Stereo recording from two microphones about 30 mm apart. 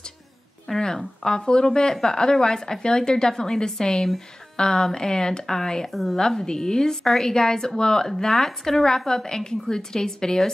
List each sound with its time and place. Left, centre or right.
0.7 s speech: left
5.9 s a woman's voice: centre
6.1 s speech: left
8.2 s speech: centre